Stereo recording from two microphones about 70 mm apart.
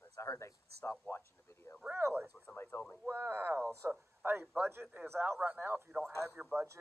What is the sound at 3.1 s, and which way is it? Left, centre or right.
A man's voice, right.